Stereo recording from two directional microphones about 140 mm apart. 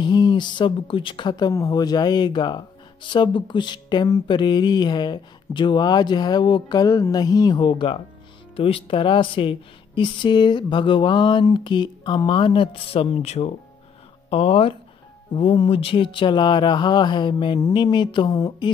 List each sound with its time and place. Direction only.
0.0 s speech: 35° left (ahead or behind)